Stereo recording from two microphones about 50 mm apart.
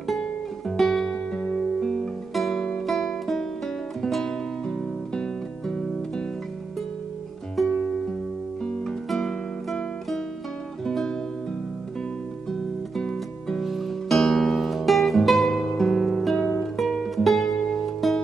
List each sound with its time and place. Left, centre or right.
0.7 s music: centre
1.1 s music: left
1.6 s music: centre
2.3 s guitar: centre
7.5 s music: centre
9.1 s music: centre
10.9 s music: centre
12.9 s music: centre
13.6 s music: centre
16.7 s music: centre